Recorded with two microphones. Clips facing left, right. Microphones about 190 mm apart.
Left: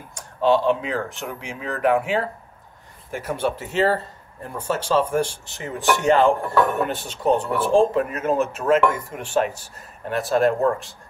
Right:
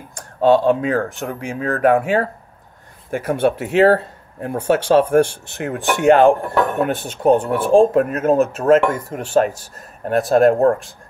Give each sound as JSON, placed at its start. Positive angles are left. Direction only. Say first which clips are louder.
{"t": 0.1, "sound": "speech", "louder": "right 5 dB", "side_deg": -50}